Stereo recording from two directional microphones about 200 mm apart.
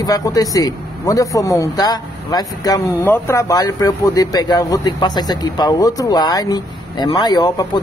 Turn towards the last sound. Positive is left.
turn(degrees=20)  # may be behind; listen again after turning